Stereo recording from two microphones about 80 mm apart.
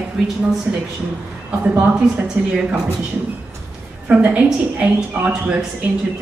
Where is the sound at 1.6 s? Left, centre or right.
Right.